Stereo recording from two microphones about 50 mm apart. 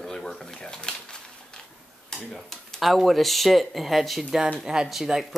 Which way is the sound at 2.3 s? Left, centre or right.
Centre.